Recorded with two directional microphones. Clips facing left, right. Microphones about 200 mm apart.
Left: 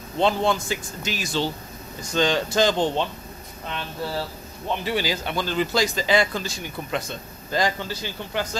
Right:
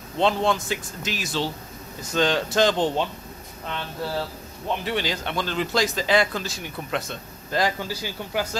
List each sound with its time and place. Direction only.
0.2 s speech: centre (ahead or behind)
4.6 s speech: 5° left (ahead or behind)